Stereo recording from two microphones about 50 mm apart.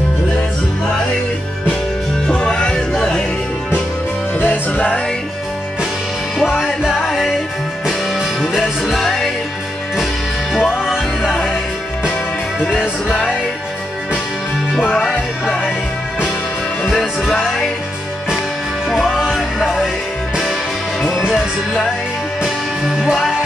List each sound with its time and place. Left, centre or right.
2.2 s music: centre
4.4 s music: left
7.0 s music: centre
10.5 s music: centre
12.5 s music: centre
15.0 s music: centre
17.0 s music: centre
18.9 s music: centre
21.2 s music: centre